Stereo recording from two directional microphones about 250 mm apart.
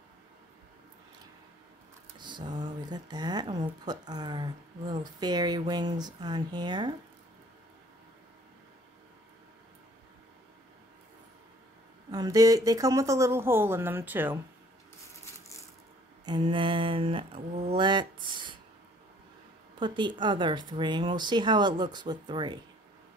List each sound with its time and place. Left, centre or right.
2.1 s a sound: centre
2.6 s speech: centre
12.1 s speech: centre
16.3 s mantra: centre
19.8 s speech: centre